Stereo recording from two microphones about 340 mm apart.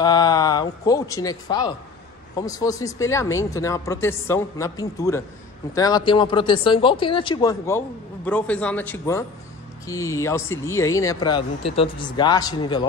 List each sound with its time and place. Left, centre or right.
0.0 s a man's voice: centre